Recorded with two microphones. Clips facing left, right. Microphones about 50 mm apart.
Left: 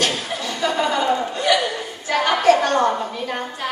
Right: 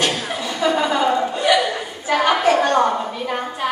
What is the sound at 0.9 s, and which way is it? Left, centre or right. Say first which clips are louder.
Chuckle: right 2 dB; centre.